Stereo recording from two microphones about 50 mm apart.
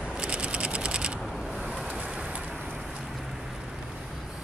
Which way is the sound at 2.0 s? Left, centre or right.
Centre.